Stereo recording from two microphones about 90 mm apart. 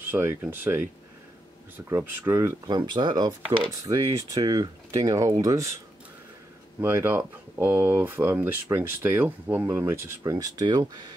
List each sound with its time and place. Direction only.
0.0 s speech: 25° right (ahead or behind)
2.0 s speech: 25° right (ahead or behind)
2.6 s speech: 50° right (ahead or behind)
6.8 s speech: 25° right (ahead or behind)
10.2 s speech: 45° right (ahead or behind)